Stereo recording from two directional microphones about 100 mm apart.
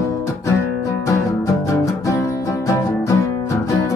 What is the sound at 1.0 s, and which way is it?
Music, 30° left (ahead or behind).